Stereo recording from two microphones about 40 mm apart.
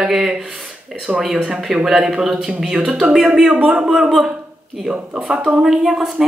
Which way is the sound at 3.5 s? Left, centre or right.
Right.